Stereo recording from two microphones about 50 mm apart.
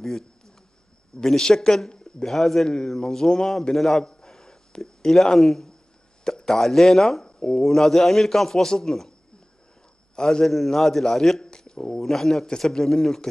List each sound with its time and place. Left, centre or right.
1.1 s a man's voice: centre
4.1 s a sound: centre
6.2 s a man's voice: centre
10.1 s a man's voice: centre